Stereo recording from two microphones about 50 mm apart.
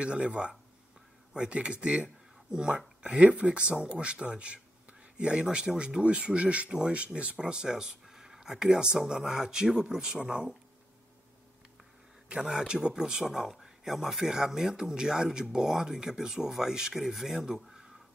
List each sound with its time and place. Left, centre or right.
0.0 s speech: right
12.3 s speech: centre